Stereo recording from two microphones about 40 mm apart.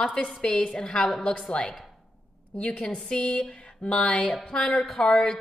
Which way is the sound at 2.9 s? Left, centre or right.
Left.